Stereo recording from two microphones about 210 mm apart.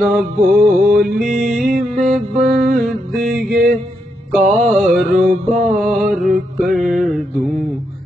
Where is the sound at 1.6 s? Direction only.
40° right (ahead or behind).